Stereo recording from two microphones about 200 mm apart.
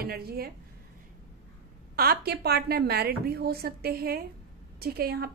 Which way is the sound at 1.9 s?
50° right (ahead or behind).